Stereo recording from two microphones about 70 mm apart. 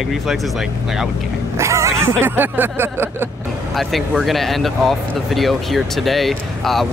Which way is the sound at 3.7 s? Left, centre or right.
Centre.